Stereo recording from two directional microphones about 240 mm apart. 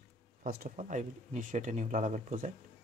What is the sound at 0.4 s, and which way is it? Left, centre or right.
Speech, right.